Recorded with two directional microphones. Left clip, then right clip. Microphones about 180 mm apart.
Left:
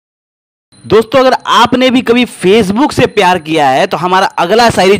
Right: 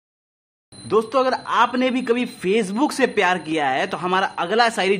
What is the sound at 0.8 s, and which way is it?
A man's voice, 45° left (ahead or behind).